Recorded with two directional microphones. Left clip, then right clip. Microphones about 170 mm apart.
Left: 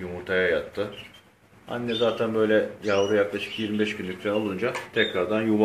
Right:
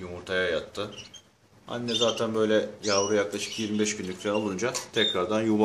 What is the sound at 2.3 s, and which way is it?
Speech, 15° right (ahead or behind).